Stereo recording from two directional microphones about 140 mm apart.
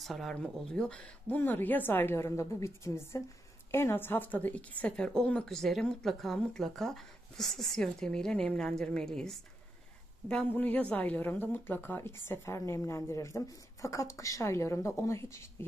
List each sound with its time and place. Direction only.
0.0 s a woman's voice: centre (ahead or behind); by 15.4 s 20° left (ahead or behind)